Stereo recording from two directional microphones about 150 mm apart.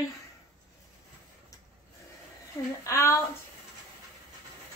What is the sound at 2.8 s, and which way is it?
Speech, 20° left (ahead or behind).